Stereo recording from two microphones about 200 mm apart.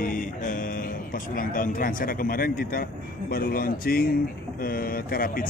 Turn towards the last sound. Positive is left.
turn(degrees=45)  # may be behind; listen again after turning